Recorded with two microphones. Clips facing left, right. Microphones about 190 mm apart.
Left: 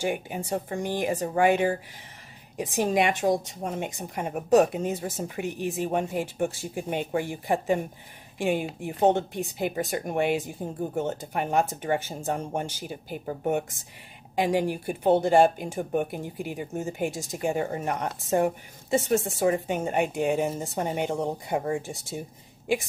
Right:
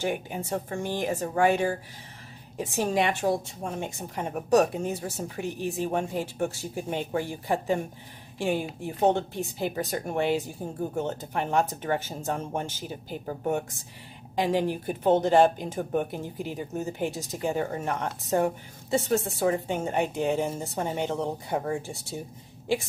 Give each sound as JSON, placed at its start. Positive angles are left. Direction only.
{"t": 0.0, "sound": "a woman's voice", "side_deg": 10}